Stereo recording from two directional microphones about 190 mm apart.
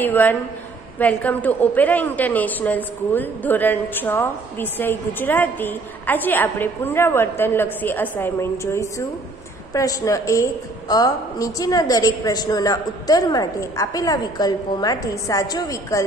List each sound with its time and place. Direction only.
0.0 s a woman's voice: 10° left (ahead or behind)